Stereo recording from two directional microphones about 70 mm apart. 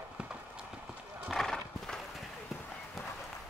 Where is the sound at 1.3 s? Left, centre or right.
Centre.